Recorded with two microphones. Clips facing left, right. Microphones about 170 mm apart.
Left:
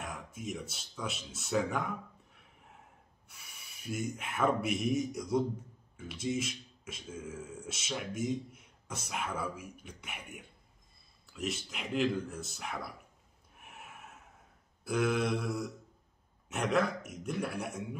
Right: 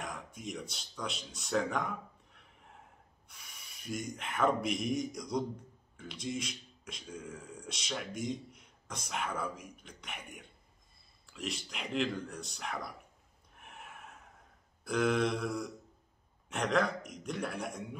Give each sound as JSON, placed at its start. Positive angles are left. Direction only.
{"t": 0.0, "sound": "speech", "side_deg": 5}
{"t": 3.3, "sound": "speech", "side_deg": 5}
{"t": 13.6, "sound": "a sound", "side_deg": 5}
{"t": 14.9, "sound": "speech", "side_deg": 5}